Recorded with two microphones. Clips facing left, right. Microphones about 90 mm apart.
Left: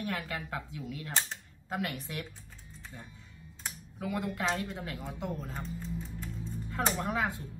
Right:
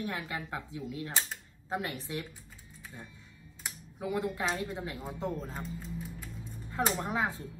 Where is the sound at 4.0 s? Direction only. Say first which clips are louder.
Right 1 dB; 20° right (ahead or behind).